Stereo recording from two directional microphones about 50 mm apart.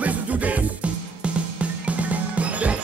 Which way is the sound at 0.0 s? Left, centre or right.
Right.